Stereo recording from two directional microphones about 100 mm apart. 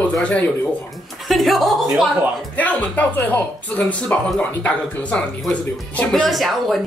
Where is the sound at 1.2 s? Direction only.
Centre (ahead or behind).